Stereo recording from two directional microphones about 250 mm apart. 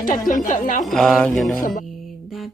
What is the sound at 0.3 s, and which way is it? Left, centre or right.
Speech, left.